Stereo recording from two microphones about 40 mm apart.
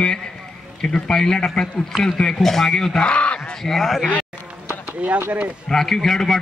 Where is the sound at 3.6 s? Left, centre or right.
Centre.